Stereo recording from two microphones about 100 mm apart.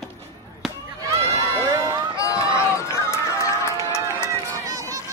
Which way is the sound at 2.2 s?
30° left (ahead or behind).